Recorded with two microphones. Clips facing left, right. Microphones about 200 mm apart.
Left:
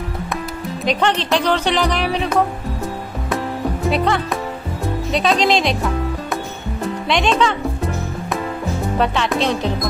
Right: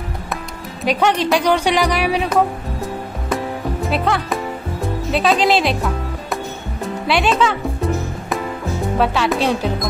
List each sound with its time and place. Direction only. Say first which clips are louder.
0.8 s music: right 2 dB; 10° right (ahead or behind)
3.9 s music: even; centre (ahead or behind)
7.1 s music: right 1 dB; 5° right (ahead or behind)
8.9 s music: right 2 dB; 5° right (ahead or behind)